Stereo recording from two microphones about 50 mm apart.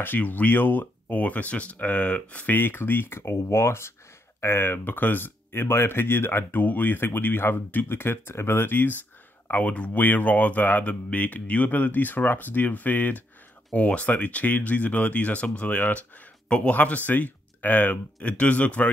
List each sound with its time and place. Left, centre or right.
0.0 s speech: left
2.5 s speech: left
6.6 s speech: left
9.5 s speech: left
13.7 s speech: left